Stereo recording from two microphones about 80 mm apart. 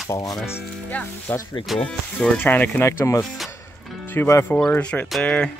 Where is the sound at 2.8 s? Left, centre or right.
Left; by 5.5 s centre.